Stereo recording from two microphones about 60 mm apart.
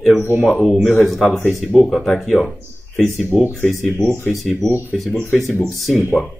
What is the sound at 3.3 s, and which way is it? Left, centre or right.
Speech, centre.